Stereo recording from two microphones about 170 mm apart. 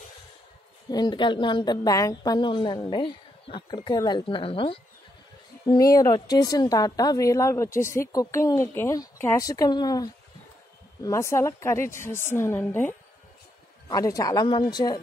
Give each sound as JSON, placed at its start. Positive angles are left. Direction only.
{"t": 0.8, "sound": "a woman's voice", "side_deg": 25}
{"t": 5.7, "sound": "a woman's voice", "side_deg": 20}